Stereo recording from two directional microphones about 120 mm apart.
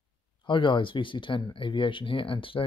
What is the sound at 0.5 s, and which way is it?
Speech, 40° left (ahead or behind).